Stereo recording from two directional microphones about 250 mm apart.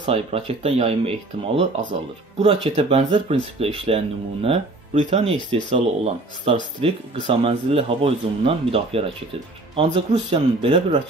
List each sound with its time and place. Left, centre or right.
0.0 s speech: right